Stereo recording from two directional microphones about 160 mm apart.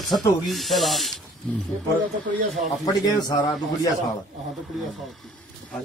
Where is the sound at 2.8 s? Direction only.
25° left (ahead or behind).